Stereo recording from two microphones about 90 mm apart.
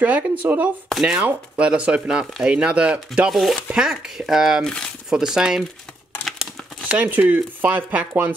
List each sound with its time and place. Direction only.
0.0 s speech: 20° right (ahead or behind)
4.6 s speech: 10° left (ahead or behind)
5.1 s speech: 5° right (ahead or behind)
6.2 s crumpling: centre (ahead or behind)
6.8 s chopping: 15° right (ahead or behind)